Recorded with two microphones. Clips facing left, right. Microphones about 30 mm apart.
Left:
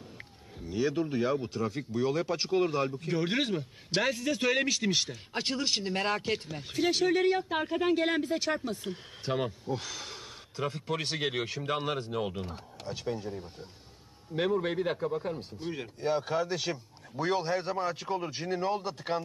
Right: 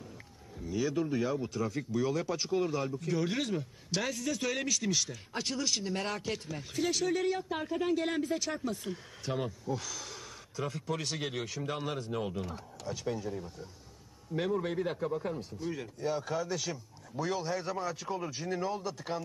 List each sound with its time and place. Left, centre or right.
0.7 s speech: left
8.5 s speech: left
14.6 s speech: left